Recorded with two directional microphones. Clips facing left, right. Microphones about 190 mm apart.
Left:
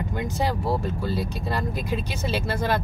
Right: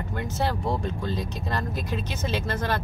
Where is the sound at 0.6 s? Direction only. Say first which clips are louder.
Left 2 dB; 5° left (ahead or behind).